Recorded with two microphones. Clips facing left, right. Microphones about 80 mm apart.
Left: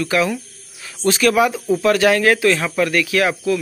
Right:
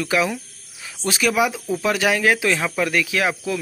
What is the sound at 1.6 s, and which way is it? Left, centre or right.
Speech, centre.